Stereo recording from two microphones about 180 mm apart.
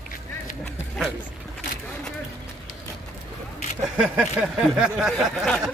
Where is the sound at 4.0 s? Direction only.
5° right (ahead or behind).